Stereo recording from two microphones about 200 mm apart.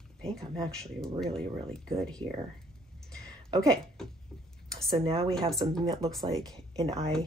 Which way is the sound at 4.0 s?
Centre (ahead or behind).